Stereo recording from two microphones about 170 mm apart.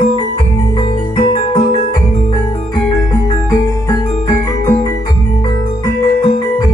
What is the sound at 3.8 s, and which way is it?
Music, 20° left (ahead or behind).